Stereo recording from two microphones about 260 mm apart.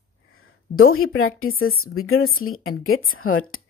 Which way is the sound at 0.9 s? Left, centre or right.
Left.